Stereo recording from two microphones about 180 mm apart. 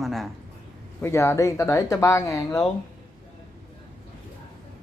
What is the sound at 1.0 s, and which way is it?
A man's voice, 15° left (ahead or behind).